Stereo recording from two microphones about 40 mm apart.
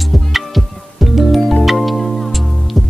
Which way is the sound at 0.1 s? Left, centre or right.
Centre.